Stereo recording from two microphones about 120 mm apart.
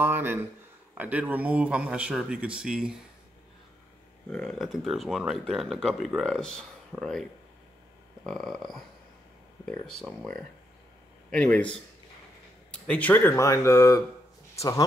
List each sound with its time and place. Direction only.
0.0 s speech: 20° right (ahead or behind)
4.3 s speech: 5° left (ahead or behind)
8.3 s speech: 5° left (ahead or behind)
11.4 s speech: 10° left (ahead or behind)
12.7 s speech: 10° left (ahead or behind); by 14.9 s 25° left (ahead or behind)